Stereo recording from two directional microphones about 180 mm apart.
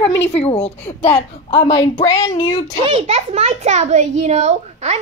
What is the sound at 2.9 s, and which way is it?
A child's voice, 40° right (ahead or behind).